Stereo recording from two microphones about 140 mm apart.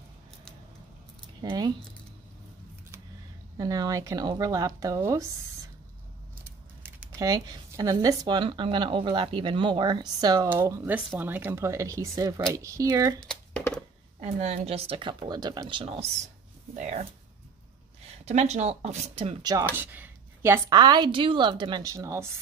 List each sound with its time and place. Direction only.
1.4 s speech: 30° right (ahead or behind)
3.5 s speech: 25° right (ahead or behind)
6.8 s a sound: 15° right (ahead or behind)
7.2 s a woman's voice: 25° right (ahead or behind)
10.9 s speech: 10° right (ahead or behind)
13.2 s a sound: 5° left (ahead or behind)
14.2 s a woman's voice: 50° right (ahead or behind)
16.7 s speech: 55° right (ahead or behind)
18.2 s speech: 55° right (ahead or behind)
19.7 s speech: 15° right (ahead or behind)
20.7 s a woman's voice: 30° right (ahead or behind)